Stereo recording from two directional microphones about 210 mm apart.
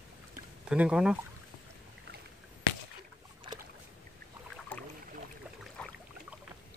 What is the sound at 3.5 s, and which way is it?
Boat, 20° right (ahead or behind).